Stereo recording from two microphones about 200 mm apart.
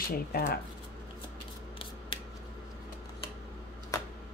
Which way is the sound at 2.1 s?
25° left (ahead or behind).